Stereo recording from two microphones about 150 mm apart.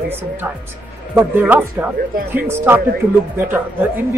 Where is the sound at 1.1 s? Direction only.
10° right (ahead or behind).